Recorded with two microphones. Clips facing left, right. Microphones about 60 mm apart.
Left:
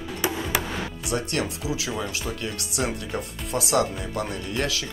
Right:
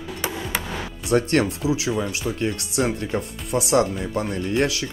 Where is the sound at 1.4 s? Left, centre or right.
Right.